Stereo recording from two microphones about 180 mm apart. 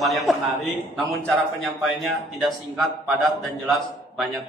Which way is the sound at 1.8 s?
Centre (ahead or behind).